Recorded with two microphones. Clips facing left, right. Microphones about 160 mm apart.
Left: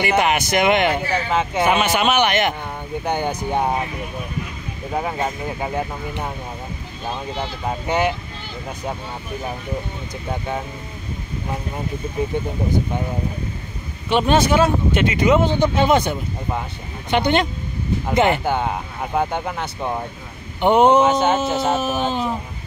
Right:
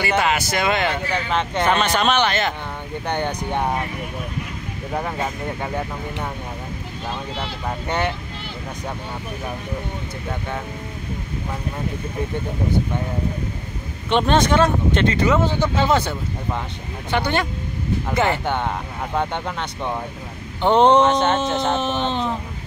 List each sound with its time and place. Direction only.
0.0 s speech: 20° left (ahead or behind)
1.3 s speech: 5° left (ahead or behind)
4.9 s speech: 5° left (ahead or behind)
7.1 s speech: 15° left (ahead or behind)
14.0 s speech: 5° left (ahead or behind)
18.4 s speech: 5° left (ahead or behind)